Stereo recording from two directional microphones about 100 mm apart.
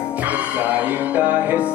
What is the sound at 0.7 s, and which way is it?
Music, 15° right (ahead or behind).